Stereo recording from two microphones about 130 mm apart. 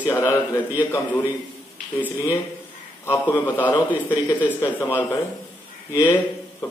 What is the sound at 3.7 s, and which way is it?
Speech, 35° left (ahead or behind).